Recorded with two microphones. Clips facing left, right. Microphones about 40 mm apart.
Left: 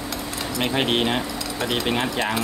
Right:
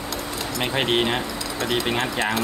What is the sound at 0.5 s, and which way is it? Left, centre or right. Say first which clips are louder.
Speech: even; centre.